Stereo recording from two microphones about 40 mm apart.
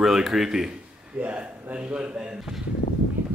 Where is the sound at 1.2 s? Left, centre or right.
Right.